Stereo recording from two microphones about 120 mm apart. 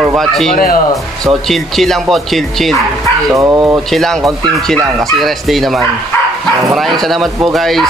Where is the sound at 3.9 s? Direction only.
5° left (ahead or behind).